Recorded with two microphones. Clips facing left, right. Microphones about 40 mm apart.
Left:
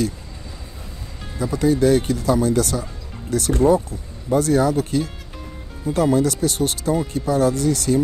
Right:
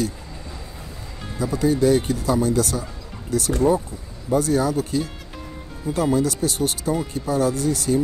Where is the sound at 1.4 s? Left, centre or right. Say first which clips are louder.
Left 2 dB; left.